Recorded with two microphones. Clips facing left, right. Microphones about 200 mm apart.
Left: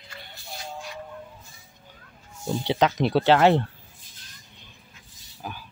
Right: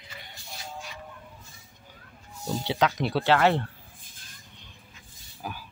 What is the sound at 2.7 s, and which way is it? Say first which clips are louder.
Speech: left 4 dB; 25° left (ahead or behind).